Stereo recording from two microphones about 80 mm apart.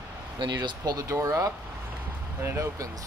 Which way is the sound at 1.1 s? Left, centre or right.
Right.